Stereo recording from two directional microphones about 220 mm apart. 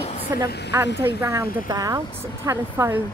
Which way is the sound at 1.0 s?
15° right (ahead or behind).